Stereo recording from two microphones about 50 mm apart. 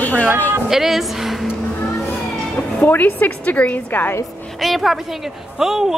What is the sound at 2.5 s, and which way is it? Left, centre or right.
Speech, left.